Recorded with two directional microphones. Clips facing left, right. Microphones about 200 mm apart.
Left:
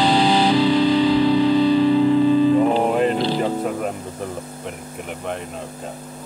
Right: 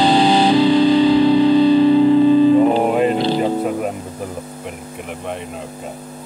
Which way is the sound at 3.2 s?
25° right (ahead or behind).